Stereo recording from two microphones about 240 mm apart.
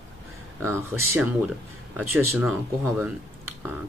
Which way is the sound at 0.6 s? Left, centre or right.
Centre.